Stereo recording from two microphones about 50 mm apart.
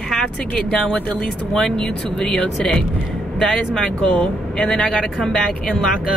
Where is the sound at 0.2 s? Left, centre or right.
Centre.